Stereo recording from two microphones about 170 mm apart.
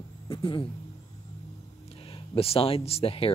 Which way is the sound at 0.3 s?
30° left (ahead or behind).